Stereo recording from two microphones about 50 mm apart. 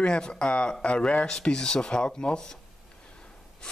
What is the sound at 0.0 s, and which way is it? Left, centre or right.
Speech, centre.